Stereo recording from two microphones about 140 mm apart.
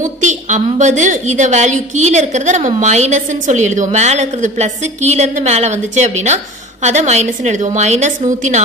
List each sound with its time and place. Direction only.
0.0 s a woman's voice: 60° right (ahead or behind)